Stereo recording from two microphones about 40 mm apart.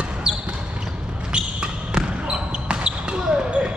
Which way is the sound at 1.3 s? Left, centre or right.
Right.